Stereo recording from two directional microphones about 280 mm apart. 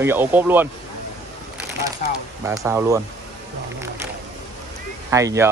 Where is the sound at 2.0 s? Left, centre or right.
Left.